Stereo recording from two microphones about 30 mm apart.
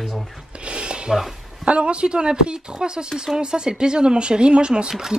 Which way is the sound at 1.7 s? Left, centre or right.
Right.